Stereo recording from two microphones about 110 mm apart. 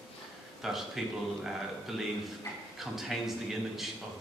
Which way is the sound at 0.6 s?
5° right (ahead or behind).